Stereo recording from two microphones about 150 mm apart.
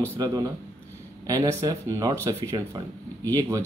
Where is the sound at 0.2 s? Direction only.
25° right (ahead or behind).